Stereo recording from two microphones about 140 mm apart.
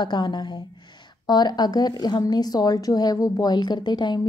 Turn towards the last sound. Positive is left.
turn(degrees=30)  # may be behind; listen again after turning